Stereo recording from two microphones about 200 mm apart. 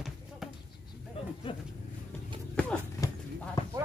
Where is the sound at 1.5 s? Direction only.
25° left (ahead or behind).